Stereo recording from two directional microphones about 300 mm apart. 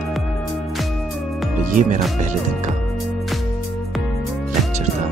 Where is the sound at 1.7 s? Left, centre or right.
Right.